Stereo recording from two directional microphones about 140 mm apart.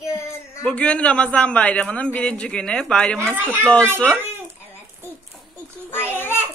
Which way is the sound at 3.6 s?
10° left (ahead or behind).